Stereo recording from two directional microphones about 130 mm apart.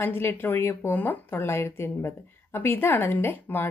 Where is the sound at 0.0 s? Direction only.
15° left (ahead or behind).